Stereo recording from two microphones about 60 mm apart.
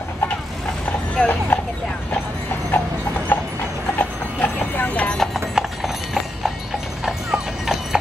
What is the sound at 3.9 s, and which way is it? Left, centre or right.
Clip-clop, left.